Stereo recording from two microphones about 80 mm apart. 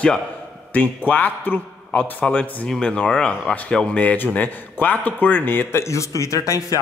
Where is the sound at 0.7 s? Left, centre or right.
Left.